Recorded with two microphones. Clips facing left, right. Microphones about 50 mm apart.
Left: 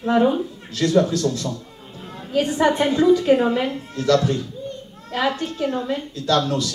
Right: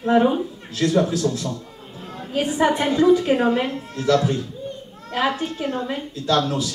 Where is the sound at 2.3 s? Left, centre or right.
Centre.